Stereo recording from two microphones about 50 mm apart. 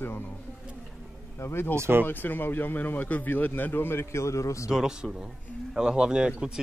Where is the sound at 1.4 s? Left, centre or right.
Left.